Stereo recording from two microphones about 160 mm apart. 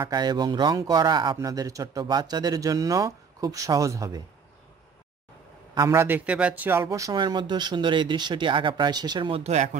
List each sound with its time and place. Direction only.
0.0 s a man's voice: 25° right (ahead or behind)
5.8 s a man's voice: 15° right (ahead or behind); by 9.8 s 45° right (ahead or behind)